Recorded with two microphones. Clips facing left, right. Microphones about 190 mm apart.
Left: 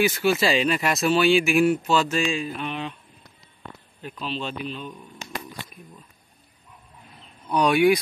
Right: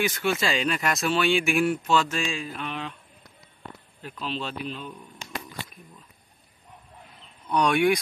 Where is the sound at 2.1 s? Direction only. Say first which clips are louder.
Left 5 dB; 20° left (ahead or behind).